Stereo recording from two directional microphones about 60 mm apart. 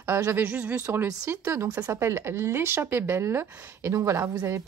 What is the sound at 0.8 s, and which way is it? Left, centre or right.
Speech, right.